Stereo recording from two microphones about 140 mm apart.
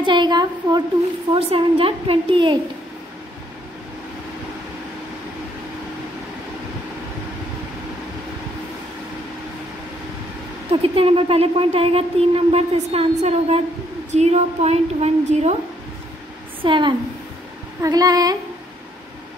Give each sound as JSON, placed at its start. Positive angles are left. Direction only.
{"t": 0.0, "sound": "a woman's voice", "side_deg": -35}
{"t": 1.3, "sound": "a woman's voice", "side_deg": -40}
{"t": 10.7, "sound": "speech", "side_deg": -40}
{"t": 16.6, "sound": "a woman's voice", "side_deg": -35}